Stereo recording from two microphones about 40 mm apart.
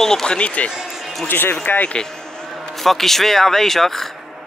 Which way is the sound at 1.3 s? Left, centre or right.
Left.